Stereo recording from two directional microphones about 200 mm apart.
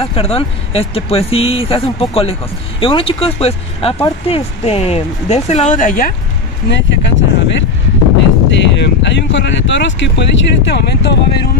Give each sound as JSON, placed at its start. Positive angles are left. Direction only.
{"t": 0.0, "sound": "speech", "side_deg": 30}
{"t": 6.7, "sound": "speech", "side_deg": 65}